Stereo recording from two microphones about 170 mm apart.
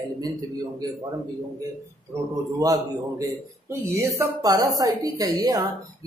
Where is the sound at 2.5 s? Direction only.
20° right (ahead or behind).